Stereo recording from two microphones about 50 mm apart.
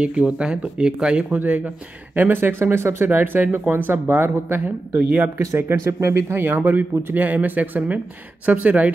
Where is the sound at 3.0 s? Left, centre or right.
Right.